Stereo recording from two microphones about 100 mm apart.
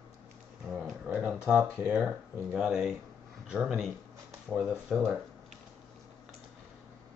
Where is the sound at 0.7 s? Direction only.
5° right (ahead or behind).